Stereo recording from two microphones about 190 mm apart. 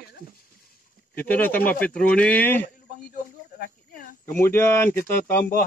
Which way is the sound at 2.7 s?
50° left (ahead or behind).